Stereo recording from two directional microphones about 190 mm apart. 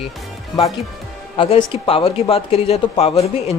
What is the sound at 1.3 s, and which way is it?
Speech, 25° left (ahead or behind).